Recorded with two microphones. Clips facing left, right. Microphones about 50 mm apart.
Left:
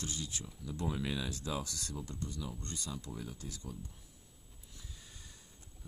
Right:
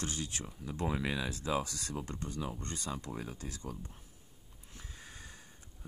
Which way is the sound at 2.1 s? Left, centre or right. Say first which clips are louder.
Right 3 dB; right.